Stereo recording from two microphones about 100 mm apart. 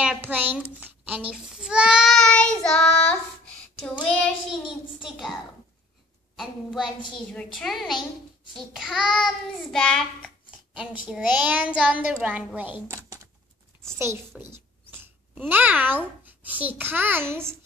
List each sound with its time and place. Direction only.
0.2 s a child's voice: 20° right (ahead or behind); by 2.2 s 5° right (ahead or behind)
2.2 s child singing: 10° left (ahead or behind)
4.5 s child singing: 5° right (ahead or behind)
10.7 s a woman's voice: 10° right (ahead or behind)
13.8 s a child's voice: 25° right (ahead or behind)
15.0 s a sound: 20° right (ahead or behind)
16.3 s a child's voice: 15° right (ahead or behind)